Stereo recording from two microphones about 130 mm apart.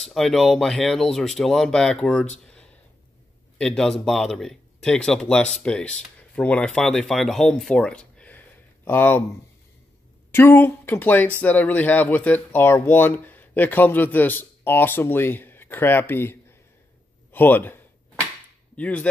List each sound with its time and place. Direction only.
0.0 s speech: centre (ahead or behind)
3.5 s speech: 5° left (ahead or behind)
10.3 s a man's voice: 15° left (ahead or behind)
18.8 s speech: 10° left (ahead or behind)